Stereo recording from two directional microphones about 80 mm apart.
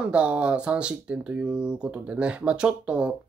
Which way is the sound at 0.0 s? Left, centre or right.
Centre.